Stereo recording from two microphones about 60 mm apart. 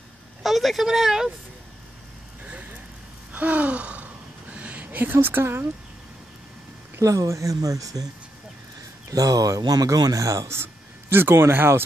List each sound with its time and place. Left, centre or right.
0.4 s speech: centre
3.3 s gasp: right
7.0 s speech: right
9.1 s speech: right
10.6 s speech: right